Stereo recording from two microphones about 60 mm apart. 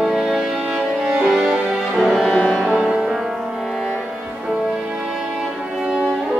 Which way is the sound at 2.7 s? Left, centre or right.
Centre.